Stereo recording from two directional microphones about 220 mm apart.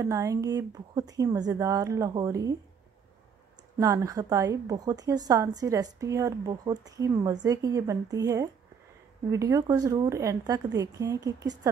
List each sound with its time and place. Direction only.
0.0 s speech: 15° right (ahead or behind)
3.7 s speech: 15° right (ahead or behind)